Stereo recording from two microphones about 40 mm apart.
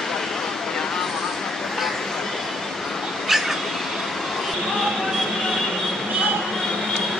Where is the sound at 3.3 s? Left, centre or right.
Centre.